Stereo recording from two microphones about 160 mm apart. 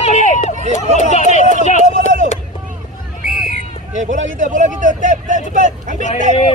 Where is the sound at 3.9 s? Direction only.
50° right (ahead or behind).